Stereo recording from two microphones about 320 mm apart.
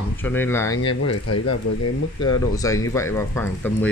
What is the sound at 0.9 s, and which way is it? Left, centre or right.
Speech, left.